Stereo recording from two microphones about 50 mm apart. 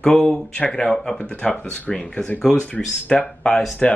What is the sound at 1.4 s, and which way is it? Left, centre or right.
Speech, left.